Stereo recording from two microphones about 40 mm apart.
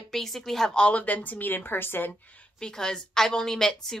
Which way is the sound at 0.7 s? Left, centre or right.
Left.